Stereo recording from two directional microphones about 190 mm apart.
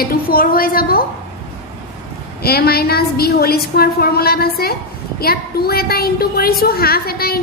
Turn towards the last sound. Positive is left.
turn(degrees=55)  # may be behind; listen again after turning